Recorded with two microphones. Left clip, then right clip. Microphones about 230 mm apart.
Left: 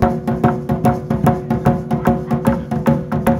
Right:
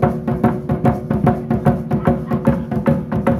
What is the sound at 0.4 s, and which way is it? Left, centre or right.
Music, left.